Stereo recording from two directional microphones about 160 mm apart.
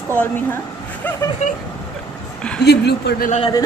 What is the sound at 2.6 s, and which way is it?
Speech, 90° left.